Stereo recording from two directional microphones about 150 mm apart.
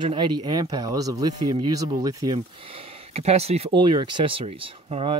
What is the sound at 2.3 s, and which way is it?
Speech, 40° right (ahead or behind).